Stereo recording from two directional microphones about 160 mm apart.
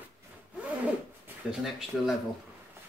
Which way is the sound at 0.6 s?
10° right (ahead or behind).